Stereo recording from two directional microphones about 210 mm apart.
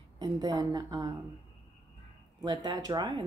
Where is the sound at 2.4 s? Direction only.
20° right (ahead or behind).